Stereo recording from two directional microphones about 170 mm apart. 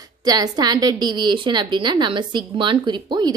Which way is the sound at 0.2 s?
25° right (ahead or behind).